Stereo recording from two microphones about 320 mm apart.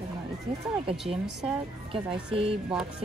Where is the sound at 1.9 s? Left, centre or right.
Centre.